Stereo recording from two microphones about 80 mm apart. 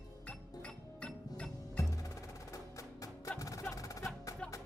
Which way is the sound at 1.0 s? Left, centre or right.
Centre.